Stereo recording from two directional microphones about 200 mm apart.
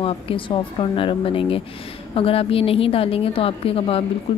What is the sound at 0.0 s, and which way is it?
A woman's voice, 25° left (ahead or behind).